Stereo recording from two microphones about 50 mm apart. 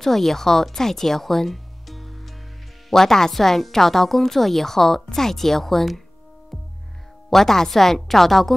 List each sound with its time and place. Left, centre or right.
0.0 s a woman's voice: centre
7.2 s a woman's voice: centre